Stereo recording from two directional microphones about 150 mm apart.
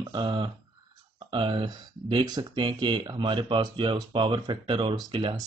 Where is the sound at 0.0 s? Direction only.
30° right (ahead or behind).